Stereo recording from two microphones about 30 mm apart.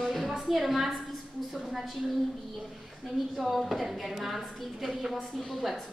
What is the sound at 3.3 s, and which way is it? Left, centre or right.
A woman's voice, centre.